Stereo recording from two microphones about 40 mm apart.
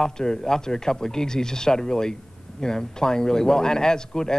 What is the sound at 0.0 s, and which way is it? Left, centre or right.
A man's voice, centre.